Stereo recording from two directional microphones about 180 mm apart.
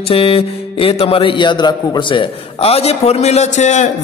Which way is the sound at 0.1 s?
30° left (ahead or behind).